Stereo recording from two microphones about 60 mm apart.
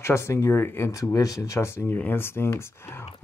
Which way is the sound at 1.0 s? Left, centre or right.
Left.